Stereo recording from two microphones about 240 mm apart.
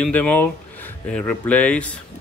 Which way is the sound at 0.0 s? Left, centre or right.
Centre.